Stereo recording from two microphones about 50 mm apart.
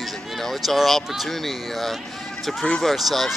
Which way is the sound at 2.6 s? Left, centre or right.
Centre.